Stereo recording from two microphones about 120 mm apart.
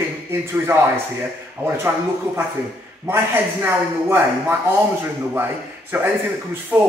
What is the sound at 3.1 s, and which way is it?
A man's voice, 20° right (ahead or behind).